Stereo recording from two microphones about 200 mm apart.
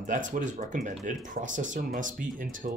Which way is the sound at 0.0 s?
40° right (ahead or behind).